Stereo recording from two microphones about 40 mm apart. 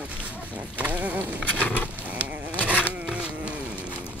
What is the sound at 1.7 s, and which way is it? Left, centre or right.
Wild animals, left.